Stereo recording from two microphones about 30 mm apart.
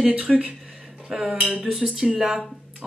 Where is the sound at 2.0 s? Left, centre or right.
Right.